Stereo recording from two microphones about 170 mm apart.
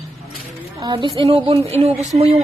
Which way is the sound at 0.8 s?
25° right (ahead or behind).